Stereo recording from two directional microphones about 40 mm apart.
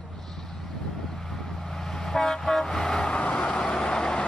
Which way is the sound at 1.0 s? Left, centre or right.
Centre.